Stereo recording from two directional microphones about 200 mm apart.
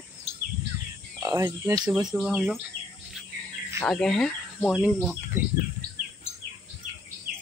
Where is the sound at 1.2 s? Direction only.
15° right (ahead or behind).